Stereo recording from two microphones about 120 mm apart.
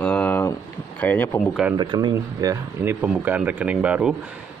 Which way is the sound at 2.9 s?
15° right (ahead or behind).